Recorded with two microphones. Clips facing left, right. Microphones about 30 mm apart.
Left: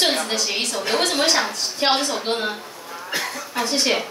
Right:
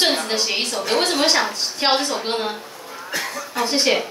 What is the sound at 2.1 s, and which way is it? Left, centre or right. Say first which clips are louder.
Speech: even; centre.